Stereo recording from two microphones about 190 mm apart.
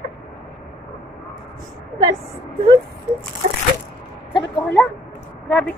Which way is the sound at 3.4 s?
40° right (ahead or behind).